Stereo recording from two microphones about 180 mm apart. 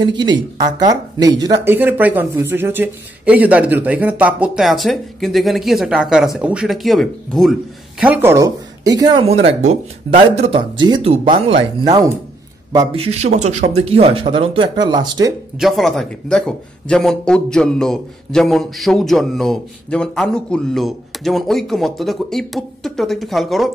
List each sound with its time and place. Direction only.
0.0 s speech: 25° right (ahead or behind); by 7.5 s centre (ahead or behind)
8.0 s speech: 10° right (ahead or behind)
9.2 s speech: 35° right (ahead or behind)
11.8 s speech: 20° right (ahead or behind)
12.9 s speech: 35° right (ahead or behind)
15.6 s speech: centre (ahead or behind)